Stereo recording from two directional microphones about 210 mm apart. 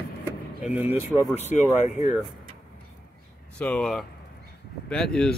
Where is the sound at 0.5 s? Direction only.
Centre (ahead or behind).